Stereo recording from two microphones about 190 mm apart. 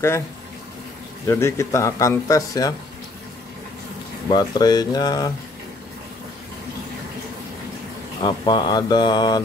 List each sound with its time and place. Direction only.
1.2 s speech: 15° left (ahead or behind)
4.3 s speech: 20° left (ahead or behind)
8.2 s speech: 25° left (ahead or behind)